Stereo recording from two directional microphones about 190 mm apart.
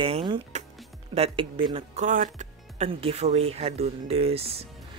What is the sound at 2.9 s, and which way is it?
Speech, 30° right (ahead or behind).